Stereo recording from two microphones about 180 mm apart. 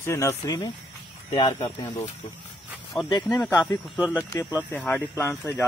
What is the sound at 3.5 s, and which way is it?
Speech, 15° left (ahead or behind).